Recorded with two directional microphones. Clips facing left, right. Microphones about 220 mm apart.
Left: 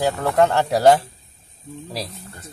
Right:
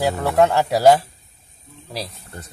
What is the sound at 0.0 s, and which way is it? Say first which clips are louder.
Speech: right 1 dB; 5° right (ahead or behind).